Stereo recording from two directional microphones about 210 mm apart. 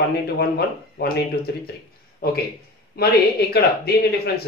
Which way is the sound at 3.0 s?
50° left (ahead or behind).